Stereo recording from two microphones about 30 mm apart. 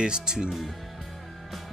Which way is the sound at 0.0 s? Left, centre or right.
Right.